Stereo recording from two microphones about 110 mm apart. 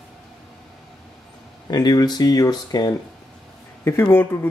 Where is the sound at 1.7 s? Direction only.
35° left (ahead or behind).